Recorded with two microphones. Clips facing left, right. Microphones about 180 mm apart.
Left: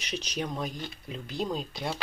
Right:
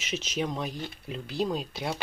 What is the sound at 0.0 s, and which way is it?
Speech, 5° right (ahead or behind).